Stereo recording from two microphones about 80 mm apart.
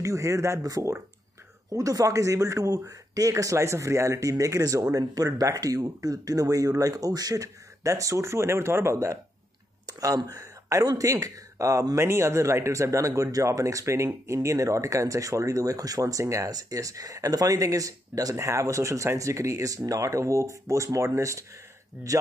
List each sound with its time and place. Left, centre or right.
0.0 s speech: right
9.8 s speech: right
21.9 s speech: centre